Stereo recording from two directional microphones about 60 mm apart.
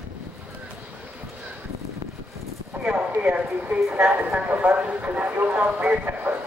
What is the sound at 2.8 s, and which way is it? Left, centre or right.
Speech, centre.